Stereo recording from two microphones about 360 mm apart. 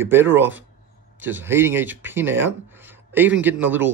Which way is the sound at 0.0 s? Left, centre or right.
Centre.